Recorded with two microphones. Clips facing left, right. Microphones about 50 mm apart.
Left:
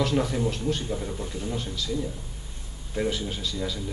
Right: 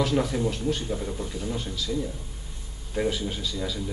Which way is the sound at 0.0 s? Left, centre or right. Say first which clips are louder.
Even; centre.